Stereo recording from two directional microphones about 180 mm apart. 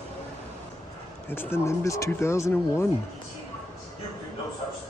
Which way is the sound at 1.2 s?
10° left (ahead or behind).